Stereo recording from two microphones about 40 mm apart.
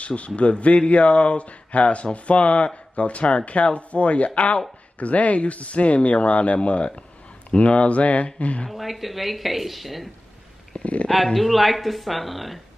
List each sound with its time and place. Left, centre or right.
0.0 s a man's voice: left
8.6 s a woman's voice: centre
10.8 s speech: left
11.3 s a woman's voice: centre